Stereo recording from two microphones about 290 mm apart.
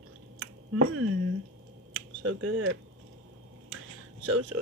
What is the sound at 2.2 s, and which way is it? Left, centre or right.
Speech, right.